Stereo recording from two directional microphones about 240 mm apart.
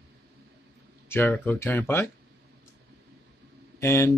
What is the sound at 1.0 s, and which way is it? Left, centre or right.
Speech, centre.